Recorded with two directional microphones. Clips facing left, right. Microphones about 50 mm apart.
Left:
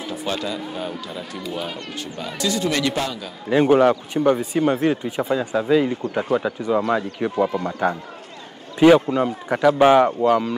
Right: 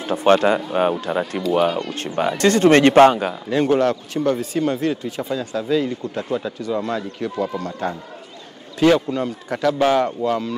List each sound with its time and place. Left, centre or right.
0.0 s speech: right
3.4 s speech: centre